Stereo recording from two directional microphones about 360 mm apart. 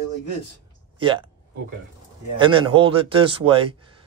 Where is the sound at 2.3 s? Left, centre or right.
Centre.